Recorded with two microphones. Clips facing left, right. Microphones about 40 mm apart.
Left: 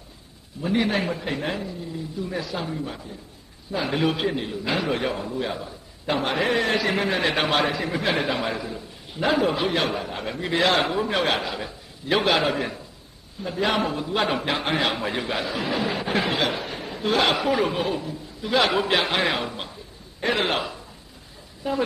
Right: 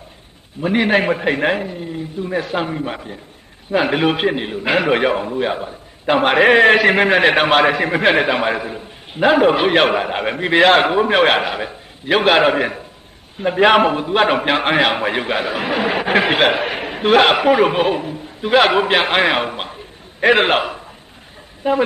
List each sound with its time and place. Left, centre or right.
0.6 s a man's voice: right